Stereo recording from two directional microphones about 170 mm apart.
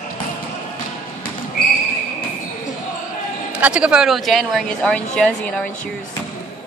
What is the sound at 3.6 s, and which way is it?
A woman's voice, 5° right (ahead or behind).